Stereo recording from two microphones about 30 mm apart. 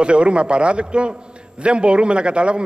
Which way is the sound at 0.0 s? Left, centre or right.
Right.